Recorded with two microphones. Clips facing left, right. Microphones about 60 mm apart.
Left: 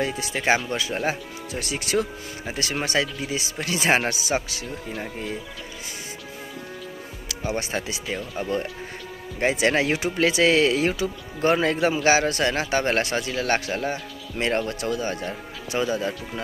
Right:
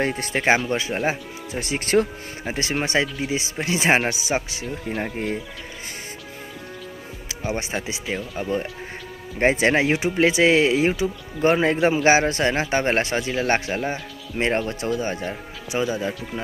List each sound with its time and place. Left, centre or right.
0.0 s speech: right
0.7 s speech: right
5.0 s speech: right
7.7 s speech: centre
9.4 s speech: right; by 16.2 s centre